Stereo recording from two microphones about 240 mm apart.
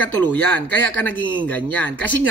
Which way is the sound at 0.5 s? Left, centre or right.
Centre.